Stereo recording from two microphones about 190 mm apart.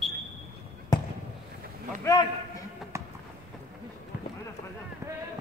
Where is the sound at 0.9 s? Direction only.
20° left (ahead or behind).